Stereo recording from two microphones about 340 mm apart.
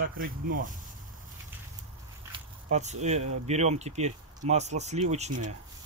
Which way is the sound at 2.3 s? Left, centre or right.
Centre.